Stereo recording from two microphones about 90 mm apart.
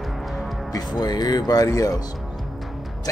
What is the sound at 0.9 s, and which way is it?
Speech, 50° left (ahead or behind).